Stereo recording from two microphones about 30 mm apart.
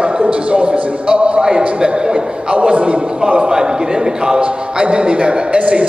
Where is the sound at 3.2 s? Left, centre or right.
Right.